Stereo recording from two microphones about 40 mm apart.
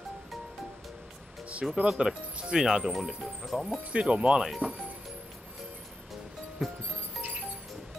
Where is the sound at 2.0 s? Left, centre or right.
Right; by 3.7 s centre.